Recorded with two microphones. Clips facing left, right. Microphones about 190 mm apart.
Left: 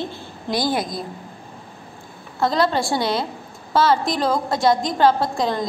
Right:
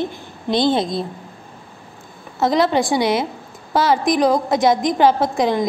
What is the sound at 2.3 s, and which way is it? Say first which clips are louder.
A woman's voice: right 3 dB; 20° right (ahead or behind).